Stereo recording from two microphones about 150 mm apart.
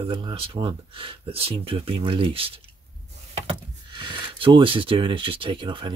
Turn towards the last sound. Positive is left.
turn(degrees=-35)  # may be behind; listen again after turning